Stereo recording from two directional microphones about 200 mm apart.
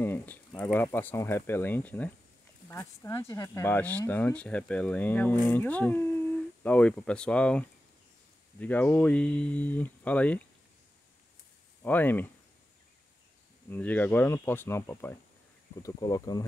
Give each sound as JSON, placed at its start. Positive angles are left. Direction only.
{"t": 0.0, "sound": "speech", "side_deg": 10}
{"t": 11.8, "sound": "speech", "side_deg": 10}
{"t": 13.7, "sound": "speech", "side_deg": 10}